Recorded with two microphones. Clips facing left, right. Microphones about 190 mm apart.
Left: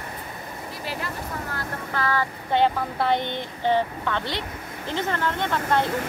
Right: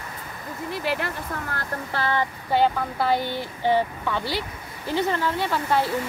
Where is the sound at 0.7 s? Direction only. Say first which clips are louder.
Right 7 dB; 65° right (ahead or behind).